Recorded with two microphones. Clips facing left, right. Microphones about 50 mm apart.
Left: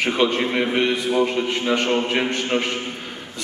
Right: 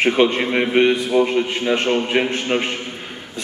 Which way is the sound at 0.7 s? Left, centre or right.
Centre.